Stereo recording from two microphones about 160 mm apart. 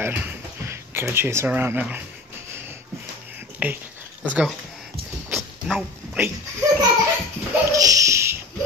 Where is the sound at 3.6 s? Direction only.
10° right (ahead or behind).